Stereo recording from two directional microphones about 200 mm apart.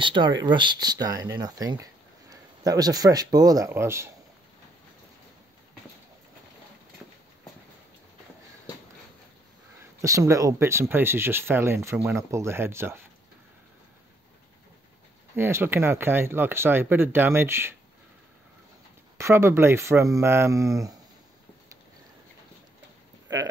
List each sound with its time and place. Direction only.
0.0 s speech: 25° right (ahead or behind)
10.0 s speech: 15° right (ahead or behind)
15.3 s speech: 10° right (ahead or behind)
19.1 s speech: 15° right (ahead or behind)